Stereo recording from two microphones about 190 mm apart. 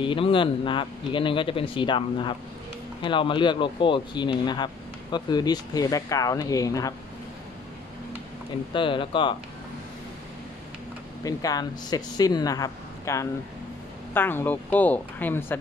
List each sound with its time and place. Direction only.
0.0 s speech: 25° left (ahead or behind)
8.7 s speech: 25° left (ahead or behind)
11.2 s speech: 20° left (ahead or behind)